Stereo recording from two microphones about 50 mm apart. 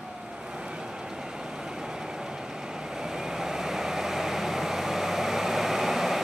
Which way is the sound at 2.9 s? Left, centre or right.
Centre.